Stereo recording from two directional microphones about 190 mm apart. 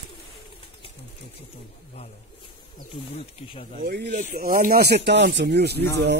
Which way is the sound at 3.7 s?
55° right (ahead or behind).